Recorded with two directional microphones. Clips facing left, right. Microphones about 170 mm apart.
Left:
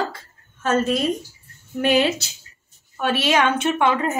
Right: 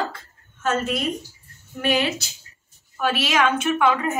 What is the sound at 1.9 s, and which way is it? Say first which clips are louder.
Speech: left 3 dB; 25° left (ahead or behind).